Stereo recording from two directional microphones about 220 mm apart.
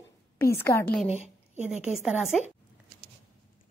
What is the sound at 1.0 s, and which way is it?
Speech, 30° left (ahead or behind).